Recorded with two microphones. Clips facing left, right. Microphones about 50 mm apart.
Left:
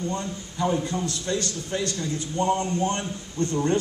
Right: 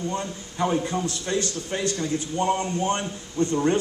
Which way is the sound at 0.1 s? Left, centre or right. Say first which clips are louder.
Right 1 dB; right.